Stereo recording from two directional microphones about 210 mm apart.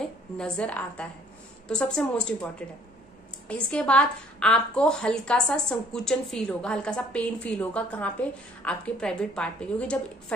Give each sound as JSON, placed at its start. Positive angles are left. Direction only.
{"t": 0.4, "sound": "a woman's voice", "side_deg": 5}